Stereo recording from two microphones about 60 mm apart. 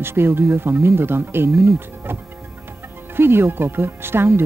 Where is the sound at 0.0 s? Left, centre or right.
Right.